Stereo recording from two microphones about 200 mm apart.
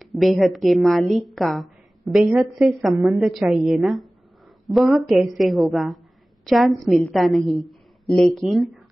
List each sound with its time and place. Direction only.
0.0 s a woman's voice: centre (ahead or behind)